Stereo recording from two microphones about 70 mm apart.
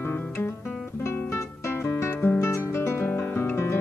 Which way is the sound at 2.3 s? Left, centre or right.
Left.